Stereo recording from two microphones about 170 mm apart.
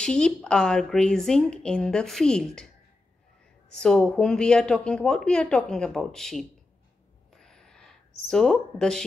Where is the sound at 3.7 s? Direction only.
5° left (ahead or behind).